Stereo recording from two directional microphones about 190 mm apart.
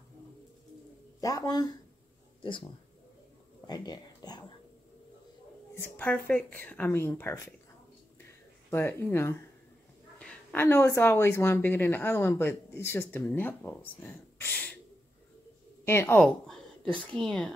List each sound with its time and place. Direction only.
1.2 s speech: 20° left (ahead or behind)
3.6 s a sound: 20° left (ahead or behind)
5.8 s speech: 10° left (ahead or behind)
8.6 s speech: 10° left (ahead or behind)
15.8 s a woman's voice: 10° left (ahead or behind)